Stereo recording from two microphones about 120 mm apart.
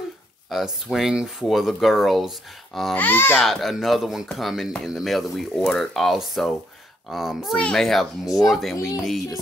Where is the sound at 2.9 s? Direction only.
15° left (ahead or behind).